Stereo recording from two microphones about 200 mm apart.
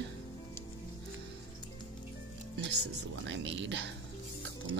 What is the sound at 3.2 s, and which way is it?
Speech, 65° right (ahead or behind).